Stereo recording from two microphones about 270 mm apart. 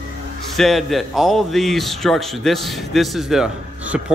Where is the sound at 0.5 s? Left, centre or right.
Centre.